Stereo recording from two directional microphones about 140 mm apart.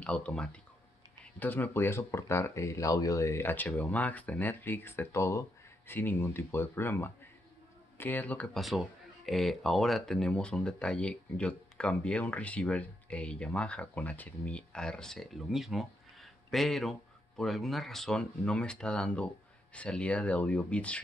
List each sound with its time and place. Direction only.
0.0 s speech: 10° left (ahead or behind)
8.5 s speech: centre (ahead or behind)